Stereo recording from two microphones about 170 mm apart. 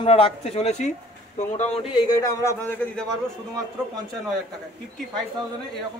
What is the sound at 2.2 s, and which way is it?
Speech, 15° left (ahead or behind).